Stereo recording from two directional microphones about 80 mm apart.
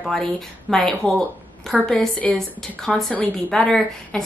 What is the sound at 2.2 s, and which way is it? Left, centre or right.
A woman's voice, centre.